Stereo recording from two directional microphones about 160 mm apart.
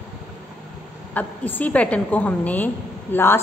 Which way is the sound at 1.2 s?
10° left (ahead or behind).